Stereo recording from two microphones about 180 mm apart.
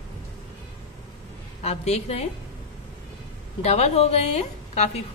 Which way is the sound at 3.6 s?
35° left (ahead or behind).